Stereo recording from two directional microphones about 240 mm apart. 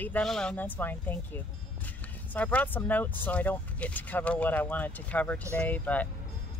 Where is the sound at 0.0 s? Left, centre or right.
Centre.